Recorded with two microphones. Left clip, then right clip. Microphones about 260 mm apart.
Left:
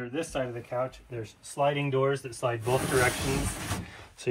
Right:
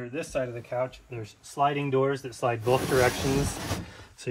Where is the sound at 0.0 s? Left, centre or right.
Centre.